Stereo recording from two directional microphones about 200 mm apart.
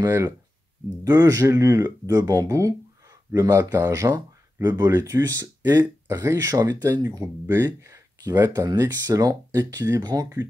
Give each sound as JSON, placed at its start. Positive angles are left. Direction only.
{"t": 0.0, "sound": "speech", "side_deg": -15}